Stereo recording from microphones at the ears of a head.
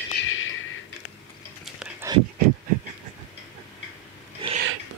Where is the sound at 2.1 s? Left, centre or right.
Right.